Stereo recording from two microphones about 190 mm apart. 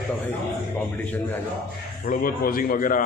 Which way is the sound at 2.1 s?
50° left (ahead or behind).